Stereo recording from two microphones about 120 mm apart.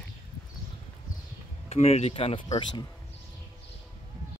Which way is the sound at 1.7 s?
60° left (ahead or behind).